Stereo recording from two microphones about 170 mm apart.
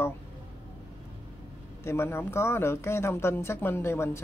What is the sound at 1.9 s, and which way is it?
Speech, 15° left (ahead or behind).